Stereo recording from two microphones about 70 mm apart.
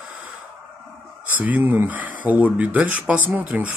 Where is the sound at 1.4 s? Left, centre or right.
Right.